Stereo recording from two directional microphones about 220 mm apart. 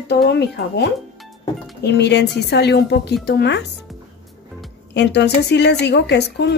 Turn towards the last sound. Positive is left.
turn(degrees=50)  # may be behind; listen again after turning